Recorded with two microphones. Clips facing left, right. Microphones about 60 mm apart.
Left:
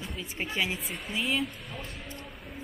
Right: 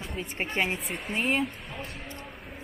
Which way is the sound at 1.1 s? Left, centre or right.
Right.